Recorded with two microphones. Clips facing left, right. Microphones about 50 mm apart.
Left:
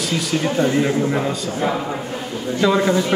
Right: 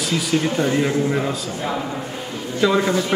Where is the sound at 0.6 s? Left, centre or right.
Centre.